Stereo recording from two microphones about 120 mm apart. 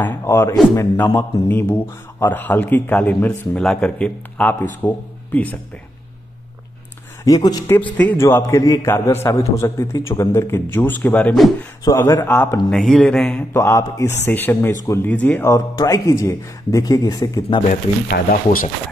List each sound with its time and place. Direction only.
0.0 s a man's voice: 20° left (ahead or behind)
7.2 s speech: 30° left (ahead or behind)
7.7 s a man's voice: 15° left (ahead or behind)
11.8 s a man's voice: 25° left (ahead or behind)
12.6 s mantra: 5° left (ahead or behind)
13.5 s a man's voice: 25° left (ahead or behind)
15.5 s a man's voice: 30° left (ahead or behind)